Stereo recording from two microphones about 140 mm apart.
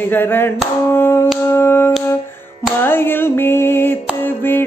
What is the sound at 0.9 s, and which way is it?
Music, 15° left (ahead or behind).